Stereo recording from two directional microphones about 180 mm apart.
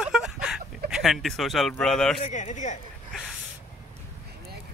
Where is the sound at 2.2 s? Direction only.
40° left (ahead or behind).